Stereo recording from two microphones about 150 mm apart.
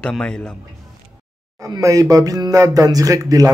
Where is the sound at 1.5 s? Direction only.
20° right (ahead or behind).